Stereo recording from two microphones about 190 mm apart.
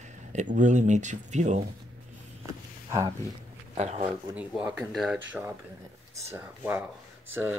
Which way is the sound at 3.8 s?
35° right (ahead or behind).